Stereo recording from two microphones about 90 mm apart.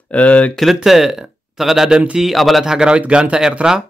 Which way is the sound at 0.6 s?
Centre (ahead or behind).